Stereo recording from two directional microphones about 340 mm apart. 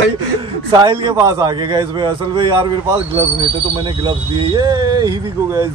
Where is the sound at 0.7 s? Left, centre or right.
Centre.